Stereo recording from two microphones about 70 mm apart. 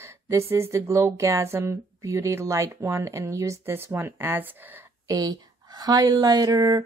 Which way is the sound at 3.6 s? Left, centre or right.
Right.